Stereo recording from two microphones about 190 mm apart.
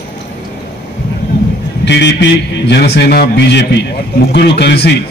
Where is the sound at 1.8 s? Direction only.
65° left (ahead or behind).